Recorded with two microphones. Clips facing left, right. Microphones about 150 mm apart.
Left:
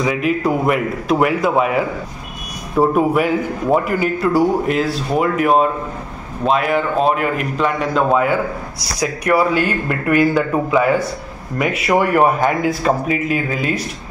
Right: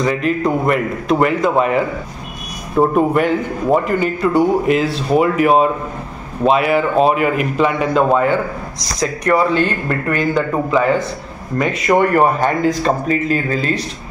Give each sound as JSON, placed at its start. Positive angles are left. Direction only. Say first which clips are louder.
{"t": 0.0, "sound": "a man's voice", "louder": "right 1 dB", "side_deg": 5}